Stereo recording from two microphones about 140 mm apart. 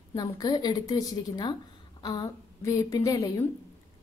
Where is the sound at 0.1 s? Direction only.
25° left (ahead or behind).